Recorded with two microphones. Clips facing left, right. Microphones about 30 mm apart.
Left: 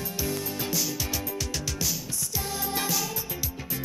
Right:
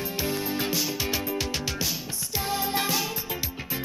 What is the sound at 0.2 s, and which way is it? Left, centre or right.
Music, right.